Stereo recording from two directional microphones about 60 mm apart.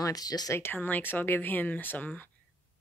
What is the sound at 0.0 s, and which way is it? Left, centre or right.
Speech, left.